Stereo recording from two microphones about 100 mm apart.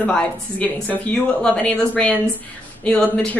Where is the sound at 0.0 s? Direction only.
15° left (ahead or behind).